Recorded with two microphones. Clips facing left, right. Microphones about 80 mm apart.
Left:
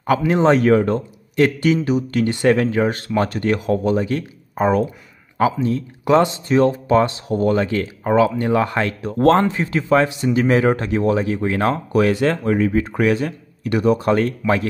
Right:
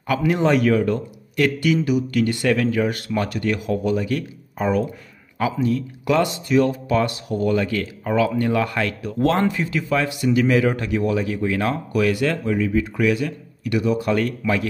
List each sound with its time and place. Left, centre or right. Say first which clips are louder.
0.2 s speech: left 1 dB; left
9.1 s speech: left 5 dB; left
12.4 s speech: left 3 dB; left